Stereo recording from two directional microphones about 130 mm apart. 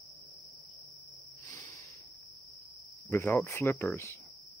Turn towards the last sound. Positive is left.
turn(degrees=20)  # may be behind; listen again after turning